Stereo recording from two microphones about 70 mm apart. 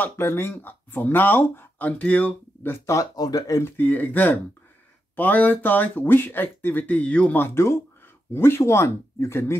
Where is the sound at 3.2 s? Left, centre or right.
Left.